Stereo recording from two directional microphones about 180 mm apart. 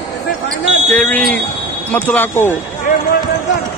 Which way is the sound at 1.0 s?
5° left (ahead or behind).